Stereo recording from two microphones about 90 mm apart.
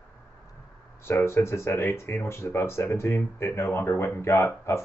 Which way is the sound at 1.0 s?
25° left (ahead or behind).